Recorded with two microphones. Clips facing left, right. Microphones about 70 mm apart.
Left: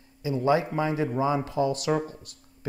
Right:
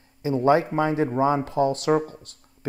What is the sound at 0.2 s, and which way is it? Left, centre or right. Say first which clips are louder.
Speech: right 4 dB; right.